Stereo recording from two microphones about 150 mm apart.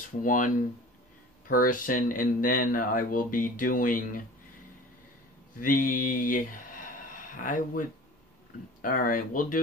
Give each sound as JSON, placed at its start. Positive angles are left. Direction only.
{"t": 0.2, "sound": "speech", "side_deg": 65}
{"t": 1.5, "sound": "speech", "side_deg": 70}
{"t": 5.6, "sound": "speech", "side_deg": 65}
{"t": 8.8, "sound": "speech", "side_deg": 70}